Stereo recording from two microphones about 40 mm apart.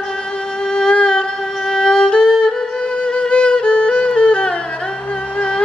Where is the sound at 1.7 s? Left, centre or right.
Centre.